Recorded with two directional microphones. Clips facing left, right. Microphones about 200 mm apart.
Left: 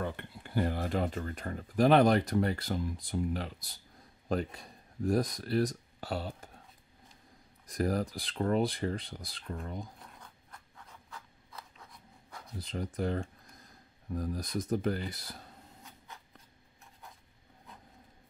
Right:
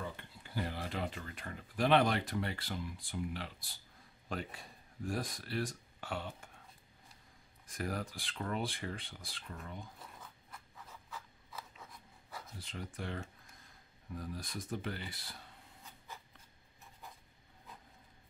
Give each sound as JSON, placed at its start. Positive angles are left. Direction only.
{"t": 0.0, "sound": "speech", "side_deg": 60}
{"t": 7.6, "sound": "speech", "side_deg": 40}
{"t": 10.2, "sound": "writing", "side_deg": -5}
{"t": 12.5, "sound": "speech", "side_deg": 40}